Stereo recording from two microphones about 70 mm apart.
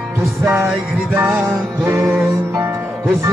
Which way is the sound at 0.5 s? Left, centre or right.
Right.